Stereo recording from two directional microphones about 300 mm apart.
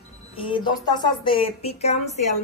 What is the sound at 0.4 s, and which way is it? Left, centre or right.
A woman's voice, centre.